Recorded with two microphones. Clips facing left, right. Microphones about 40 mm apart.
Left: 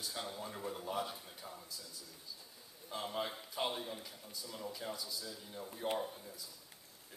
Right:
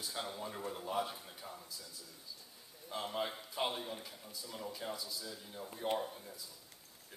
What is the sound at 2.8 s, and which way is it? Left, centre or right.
A man's voice, centre.